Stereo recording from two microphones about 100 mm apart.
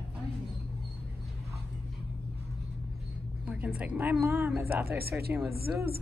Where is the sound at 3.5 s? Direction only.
15° right (ahead or behind).